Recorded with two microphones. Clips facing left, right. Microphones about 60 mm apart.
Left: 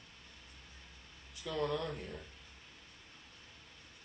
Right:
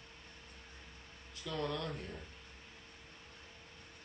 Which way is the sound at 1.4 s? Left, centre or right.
Centre.